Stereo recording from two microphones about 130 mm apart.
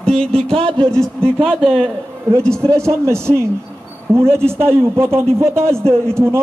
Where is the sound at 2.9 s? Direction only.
20° right (ahead or behind).